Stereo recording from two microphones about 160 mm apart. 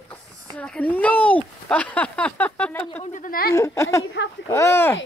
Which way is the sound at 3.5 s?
20° left (ahead or behind).